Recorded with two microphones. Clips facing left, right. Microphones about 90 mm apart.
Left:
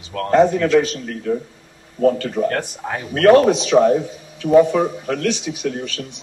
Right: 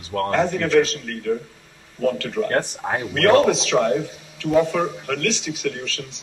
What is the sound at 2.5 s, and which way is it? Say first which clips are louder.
Speech: right 2 dB; 25° right (ahead or behind).